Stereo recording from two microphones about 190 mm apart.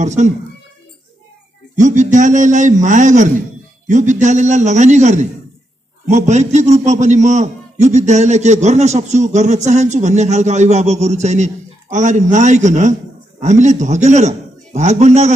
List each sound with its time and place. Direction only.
0.0 s a man's voice: 40° right (ahead or behind)
1.8 s a man's voice: 40° right (ahead or behind)